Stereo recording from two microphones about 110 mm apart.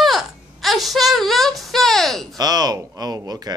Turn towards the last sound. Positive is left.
turn(degrees=-35)  # may be behind; listen again after turning